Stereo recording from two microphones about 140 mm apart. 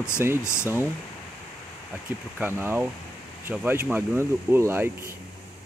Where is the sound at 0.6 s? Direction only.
15° right (ahead or behind).